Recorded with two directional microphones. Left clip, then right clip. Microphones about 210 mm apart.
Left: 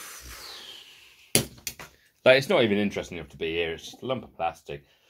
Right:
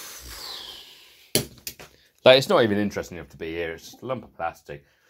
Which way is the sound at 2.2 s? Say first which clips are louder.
Right 3 dB; 30° right (ahead or behind).